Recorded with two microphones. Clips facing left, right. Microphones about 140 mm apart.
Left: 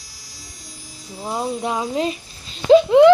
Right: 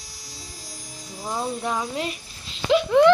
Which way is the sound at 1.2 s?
15° left (ahead or behind).